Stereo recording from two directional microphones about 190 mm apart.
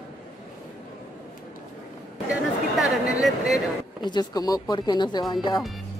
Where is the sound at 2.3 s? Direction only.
Centre (ahead or behind).